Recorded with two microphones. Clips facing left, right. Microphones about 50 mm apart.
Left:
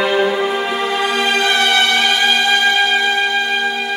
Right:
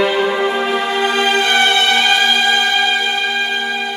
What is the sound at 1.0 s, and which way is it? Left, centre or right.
Music, right.